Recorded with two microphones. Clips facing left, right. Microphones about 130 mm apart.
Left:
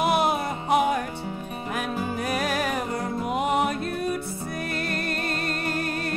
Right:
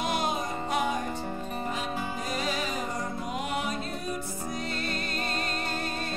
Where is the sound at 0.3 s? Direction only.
65° left (ahead or behind).